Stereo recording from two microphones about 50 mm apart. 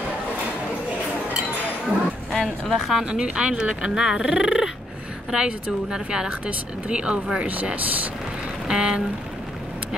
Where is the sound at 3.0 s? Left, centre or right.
Centre; by 8.0 s right.